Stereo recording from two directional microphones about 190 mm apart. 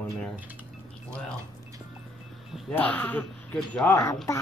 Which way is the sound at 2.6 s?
5° left (ahead or behind).